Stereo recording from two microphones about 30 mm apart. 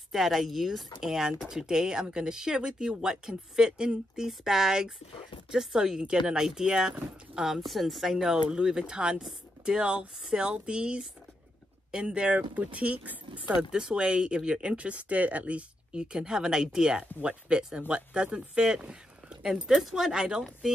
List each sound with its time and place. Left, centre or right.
0.1 s speech: centre; by 3.1 s right
3.1 s speech: right
7.5 s a woman's voice: centre
8.2 s speech: right
12.4 s speech: right
13.6 s speech: right
14.8 s speech: right
15.9 s speech: right; by 20.1 s centre
20.1 s speech: right